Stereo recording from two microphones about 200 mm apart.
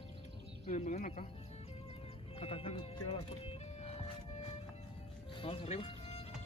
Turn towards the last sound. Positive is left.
turn(degrees=30)  # may be behind; listen again after turning